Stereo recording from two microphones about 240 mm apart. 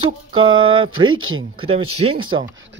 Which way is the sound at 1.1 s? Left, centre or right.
Right.